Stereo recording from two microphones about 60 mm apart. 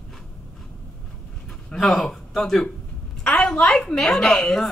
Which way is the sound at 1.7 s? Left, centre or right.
Centre.